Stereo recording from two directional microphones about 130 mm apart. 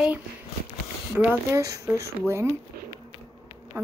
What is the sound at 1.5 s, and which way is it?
Speech, 25° right (ahead or behind).